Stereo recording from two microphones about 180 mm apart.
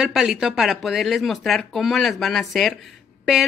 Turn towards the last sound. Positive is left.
turn(degrees=0)  # may be behind; listen again after turning